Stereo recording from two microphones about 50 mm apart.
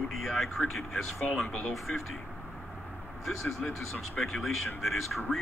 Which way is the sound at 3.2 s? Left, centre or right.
Centre.